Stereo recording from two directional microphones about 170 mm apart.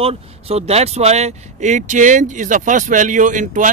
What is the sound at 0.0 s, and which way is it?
Speech, 35° right (ahead or behind).